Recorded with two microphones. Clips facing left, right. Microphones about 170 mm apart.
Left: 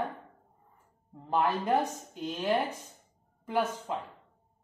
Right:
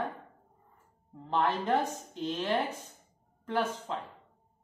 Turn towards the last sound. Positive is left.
turn(degrees=10)  # may be behind; listen again after turning